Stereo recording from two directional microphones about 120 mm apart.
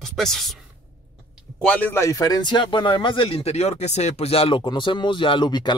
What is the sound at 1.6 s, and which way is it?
A man's voice, 10° left (ahead or behind).